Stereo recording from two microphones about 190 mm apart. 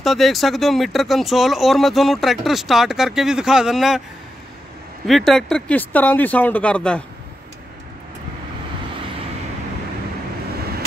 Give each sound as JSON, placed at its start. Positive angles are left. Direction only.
{"t": 0.0, "sound": "speech", "side_deg": 0}
{"t": 5.0, "sound": "speech", "side_deg": 0}